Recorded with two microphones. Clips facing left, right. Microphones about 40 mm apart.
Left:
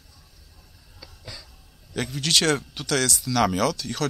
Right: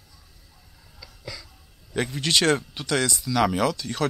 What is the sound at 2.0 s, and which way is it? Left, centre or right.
Speech, centre.